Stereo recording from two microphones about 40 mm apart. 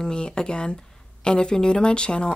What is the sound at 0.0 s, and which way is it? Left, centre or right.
Speech, left.